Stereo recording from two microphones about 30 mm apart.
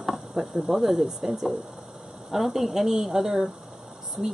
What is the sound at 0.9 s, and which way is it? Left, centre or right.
Speech, right.